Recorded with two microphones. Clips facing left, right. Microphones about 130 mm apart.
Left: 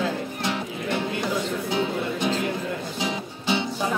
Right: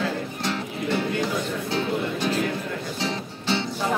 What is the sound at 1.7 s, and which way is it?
Music, 15° left (ahead or behind).